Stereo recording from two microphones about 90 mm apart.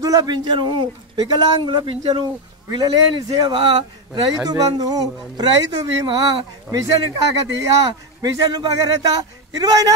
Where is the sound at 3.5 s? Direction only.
60° right (ahead or behind).